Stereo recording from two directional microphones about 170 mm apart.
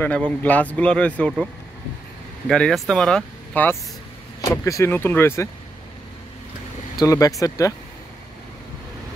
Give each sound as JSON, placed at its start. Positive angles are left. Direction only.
{"t": 0.0, "sound": "speech", "side_deg": 10}
{"t": 2.4, "sound": "speech", "side_deg": 5}
{"t": 4.5, "sound": "speech", "side_deg": 20}
{"t": 7.0, "sound": "speech", "side_deg": 20}